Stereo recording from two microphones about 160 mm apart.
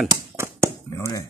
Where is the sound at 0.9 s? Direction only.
20° left (ahead or behind).